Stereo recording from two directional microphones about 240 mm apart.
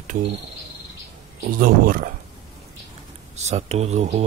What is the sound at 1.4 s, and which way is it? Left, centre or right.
Speech, right.